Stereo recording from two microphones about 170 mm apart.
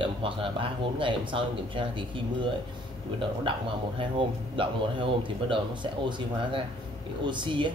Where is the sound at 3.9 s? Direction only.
30° right (ahead or behind).